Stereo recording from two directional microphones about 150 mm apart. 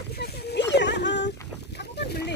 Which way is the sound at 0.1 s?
90° left.